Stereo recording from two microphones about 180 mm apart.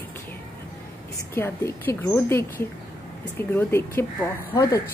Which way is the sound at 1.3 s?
10° left (ahead or behind).